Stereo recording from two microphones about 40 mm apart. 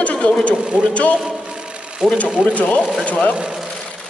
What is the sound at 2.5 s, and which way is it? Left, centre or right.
Speech, left.